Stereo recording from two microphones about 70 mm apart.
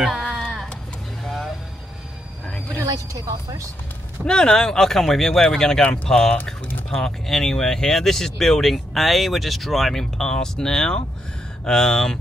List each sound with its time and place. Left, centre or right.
0.0 s a sound: centre
1.2 s vehicle: centre
2.8 s a woman's voice: right
4.2 s speech: centre